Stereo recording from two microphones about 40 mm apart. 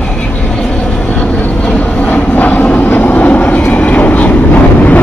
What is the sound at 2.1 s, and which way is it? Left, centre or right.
Vehicle, left.